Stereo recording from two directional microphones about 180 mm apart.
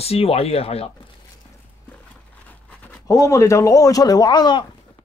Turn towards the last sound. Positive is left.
turn(degrees=25)  # may be behind; listen again after turning